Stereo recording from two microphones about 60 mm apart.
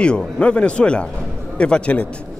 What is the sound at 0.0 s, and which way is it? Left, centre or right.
Speech, centre.